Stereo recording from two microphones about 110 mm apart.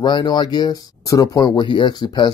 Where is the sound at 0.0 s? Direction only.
45° left (ahead or behind).